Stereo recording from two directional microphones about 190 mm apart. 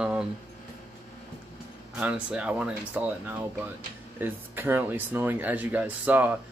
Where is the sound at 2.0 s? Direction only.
5° right (ahead or behind).